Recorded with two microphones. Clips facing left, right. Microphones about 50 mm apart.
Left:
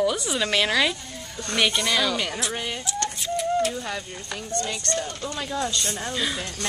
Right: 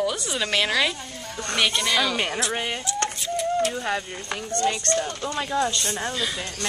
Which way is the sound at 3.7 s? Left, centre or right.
Right.